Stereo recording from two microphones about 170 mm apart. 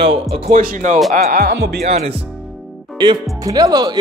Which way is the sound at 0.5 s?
55° right (ahead or behind).